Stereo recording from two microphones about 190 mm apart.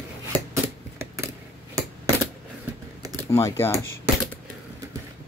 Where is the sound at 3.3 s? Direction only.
15° left (ahead or behind).